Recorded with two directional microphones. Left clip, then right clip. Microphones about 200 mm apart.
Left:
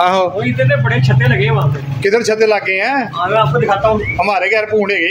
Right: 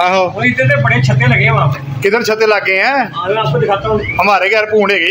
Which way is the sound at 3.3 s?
35° left (ahead or behind).